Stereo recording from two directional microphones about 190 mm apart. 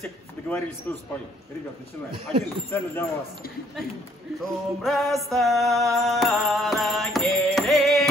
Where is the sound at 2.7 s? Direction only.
10° left (ahead or behind).